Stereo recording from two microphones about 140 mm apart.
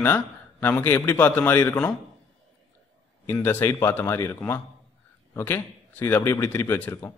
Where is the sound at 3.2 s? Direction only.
15° left (ahead or behind).